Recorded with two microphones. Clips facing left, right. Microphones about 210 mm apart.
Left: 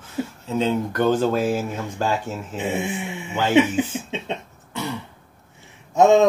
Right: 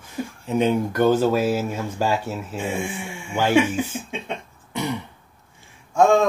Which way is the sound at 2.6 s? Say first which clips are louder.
Left 3 dB; 20° left (ahead or behind).